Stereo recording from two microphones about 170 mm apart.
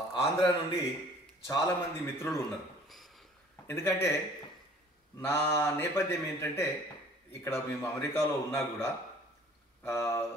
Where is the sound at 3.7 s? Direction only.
15° left (ahead or behind).